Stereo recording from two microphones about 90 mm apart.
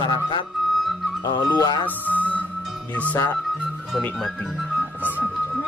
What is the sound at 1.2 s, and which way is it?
Speech, 50° left (ahead or behind).